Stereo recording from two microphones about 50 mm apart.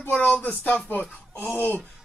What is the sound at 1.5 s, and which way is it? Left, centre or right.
Speech, left.